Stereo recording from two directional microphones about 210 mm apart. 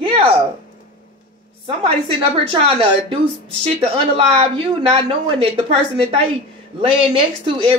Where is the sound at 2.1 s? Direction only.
25° right (ahead or behind).